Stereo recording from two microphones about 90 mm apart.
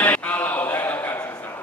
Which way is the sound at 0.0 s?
15° left (ahead or behind).